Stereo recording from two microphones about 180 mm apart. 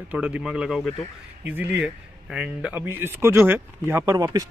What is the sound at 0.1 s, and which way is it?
Speech, 5° right (ahead or behind).